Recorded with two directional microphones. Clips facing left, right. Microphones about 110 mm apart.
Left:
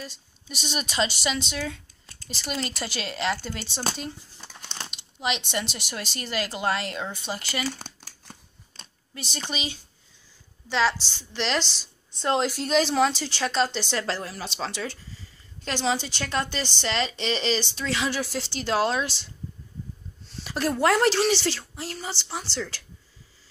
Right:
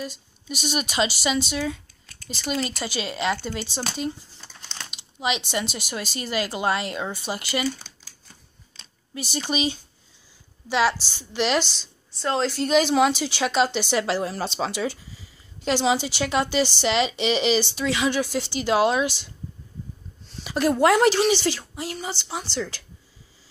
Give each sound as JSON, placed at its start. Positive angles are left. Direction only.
{"t": 0.0, "sound": "a woman's voice", "side_deg": -5}
{"t": 4.4, "sound": "a sound", "side_deg": 10}
{"t": 4.9, "sound": "a woman's voice", "side_deg": -5}
{"t": 7.6, "sound": "crumpling", "side_deg": 65}
{"t": 9.1, "sound": "speech", "side_deg": -10}
{"t": 10.7, "sound": "speech", "side_deg": -10}
{"t": 12.1, "sound": "speech", "side_deg": 20}
{"t": 12.5, "sound": "a woman's voice", "side_deg": -5}